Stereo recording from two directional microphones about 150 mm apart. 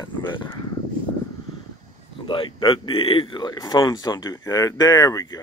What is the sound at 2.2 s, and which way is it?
Speech, 35° left (ahead or behind).